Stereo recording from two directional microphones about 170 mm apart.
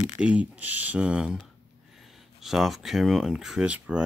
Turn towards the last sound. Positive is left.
turn(degrees=-5)  # may be behind; listen again after turning